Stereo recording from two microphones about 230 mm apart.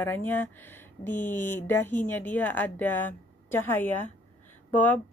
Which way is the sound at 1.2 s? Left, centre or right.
Left.